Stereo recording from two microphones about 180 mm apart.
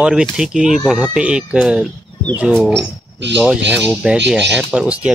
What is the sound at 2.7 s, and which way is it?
Speech, 75° right (ahead or behind).